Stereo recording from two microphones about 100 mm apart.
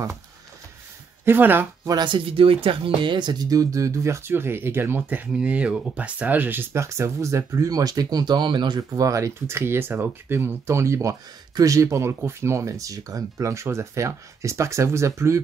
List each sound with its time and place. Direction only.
1.2 s speech: 20° right (ahead or behind)
1.9 s speech: 50° right (ahead or behind); by 15.4 s 30° right (ahead or behind)